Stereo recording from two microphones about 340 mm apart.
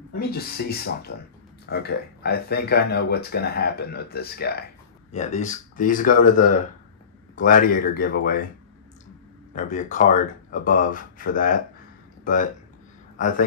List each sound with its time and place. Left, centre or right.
0.2 s speech: left
9.6 s speech: left
13.2 s speech: left